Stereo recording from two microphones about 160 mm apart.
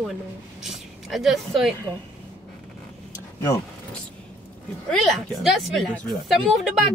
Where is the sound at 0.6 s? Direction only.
Centre (ahead or behind).